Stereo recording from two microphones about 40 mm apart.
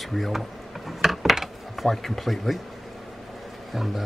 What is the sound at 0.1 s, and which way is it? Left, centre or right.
Mechanisms, centre.